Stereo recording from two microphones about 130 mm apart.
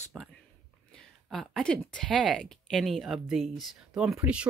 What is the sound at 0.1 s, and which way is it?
Speech, centre (ahead or behind).